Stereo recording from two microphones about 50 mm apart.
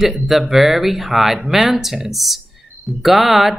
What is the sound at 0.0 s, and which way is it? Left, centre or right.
Speech, centre.